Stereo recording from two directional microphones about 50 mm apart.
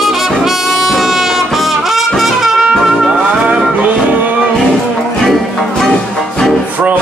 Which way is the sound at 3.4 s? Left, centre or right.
Right.